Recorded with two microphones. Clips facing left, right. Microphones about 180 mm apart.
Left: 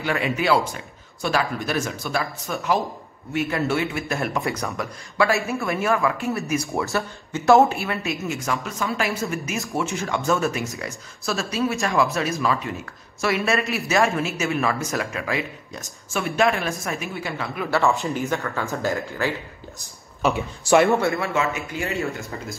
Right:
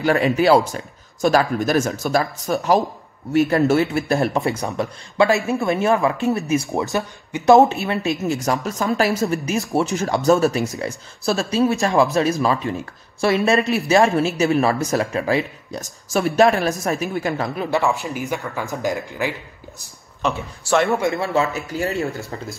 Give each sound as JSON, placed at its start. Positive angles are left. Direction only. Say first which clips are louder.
{"t": 0.0, "sound": "speech", "louder": "right 7 dB", "side_deg": -40}
{"t": 4.4, "sound": "a man's voice", "louder": "right 4 dB", "side_deg": -25}
{"t": 8.5, "sound": "speech", "louder": "right 4 dB", "side_deg": -40}
{"t": 17.6, "sound": "speech", "louder": "left 1 dB", "side_deg": -15}
{"t": 20.3, "sound": "speech", "louder": "left 3 dB", "side_deg": 15}
{"t": 21.2, "sound": "speech", "louder": "right 3 dB", "side_deg": -35}